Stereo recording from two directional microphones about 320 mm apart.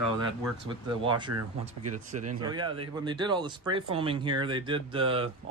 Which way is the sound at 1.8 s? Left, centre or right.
Right.